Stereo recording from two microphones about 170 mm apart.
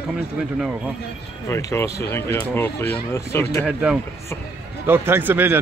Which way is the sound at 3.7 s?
5° right (ahead or behind).